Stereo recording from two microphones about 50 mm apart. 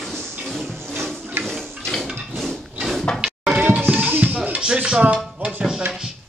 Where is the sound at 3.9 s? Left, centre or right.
Right.